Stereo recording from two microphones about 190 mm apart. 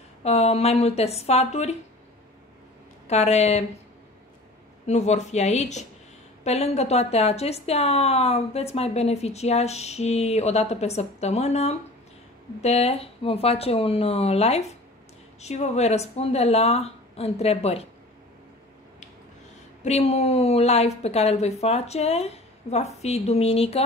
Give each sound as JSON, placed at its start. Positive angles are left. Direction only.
{"t": 0.2, "sound": "a woman's voice", "side_deg": 35}
{"t": 3.1, "sound": "a woman's voice", "side_deg": 35}
{"t": 4.8, "sound": "a woman's voice", "side_deg": 35}
{"t": 19.8, "sound": "a woman's voice", "side_deg": 35}